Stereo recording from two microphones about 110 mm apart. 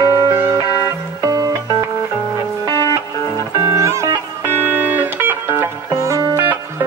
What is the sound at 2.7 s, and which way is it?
Music, 30° left (ahead or behind).